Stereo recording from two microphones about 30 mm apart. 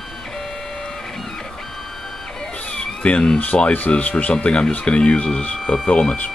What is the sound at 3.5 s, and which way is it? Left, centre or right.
Speech, left.